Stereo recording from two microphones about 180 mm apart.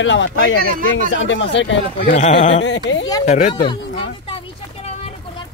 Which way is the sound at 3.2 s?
40° left (ahead or behind).